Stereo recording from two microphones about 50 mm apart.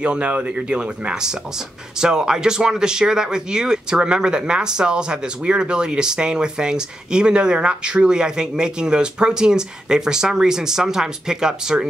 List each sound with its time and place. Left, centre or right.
0.0 s speech: right